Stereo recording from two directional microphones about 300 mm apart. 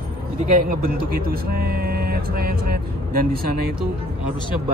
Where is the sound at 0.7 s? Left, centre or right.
Right.